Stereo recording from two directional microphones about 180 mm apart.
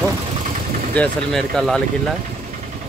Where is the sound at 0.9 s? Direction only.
5° left (ahead or behind).